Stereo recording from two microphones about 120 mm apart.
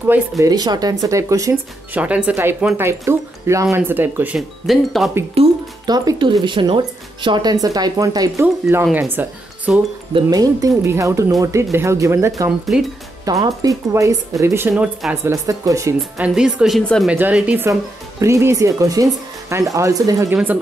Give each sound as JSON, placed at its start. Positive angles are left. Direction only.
{"t": 0.4, "sound": "speech", "side_deg": -35}
{"t": 2.0, "sound": "speech", "side_deg": -10}
{"t": 4.4, "sound": "speech", "side_deg": 0}
{"t": 5.4, "sound": "speech", "side_deg": -55}
{"t": 5.9, "sound": "a woman's voice", "side_deg": -35}
{"t": 10.3, "sound": "speech", "side_deg": -30}
{"t": 12.4, "sound": "speech", "side_deg": -5}
{"t": 13.2, "sound": "speech", "side_deg": -30}
{"t": 14.7, "sound": "speech", "side_deg": -5}
{"t": 15.2, "sound": "speech", "side_deg": -25}
{"t": 16.2, "sound": "speech", "side_deg": -5}
{"t": 16.8, "sound": "speech", "side_deg": 5}
{"t": 17.1, "sound": "speech", "side_deg": -10}
{"t": 18.2, "sound": "speech", "side_deg": -25}